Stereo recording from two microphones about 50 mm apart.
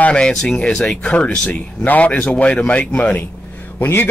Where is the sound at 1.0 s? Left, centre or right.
Left.